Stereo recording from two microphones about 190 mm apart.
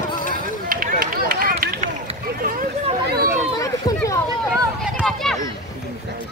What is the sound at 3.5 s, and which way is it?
Run, 15° left (ahead or behind).